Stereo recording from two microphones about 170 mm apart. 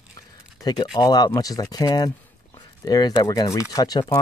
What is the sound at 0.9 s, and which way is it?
Speech, 25° left (ahead or behind).